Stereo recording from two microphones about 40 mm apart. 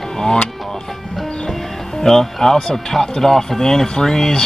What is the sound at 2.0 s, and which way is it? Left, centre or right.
Speech, centre.